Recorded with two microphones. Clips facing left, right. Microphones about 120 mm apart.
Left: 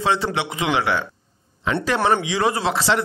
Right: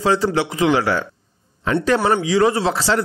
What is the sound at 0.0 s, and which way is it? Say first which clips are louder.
A man's voice: right 4 dB; 40° right (ahead or behind).